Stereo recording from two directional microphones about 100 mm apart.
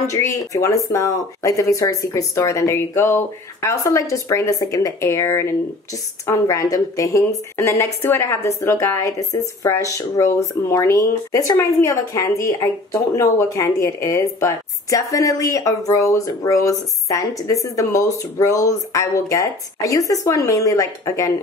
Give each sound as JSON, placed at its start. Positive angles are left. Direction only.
{"t": 0.0, "sound": "speech", "side_deg": 30}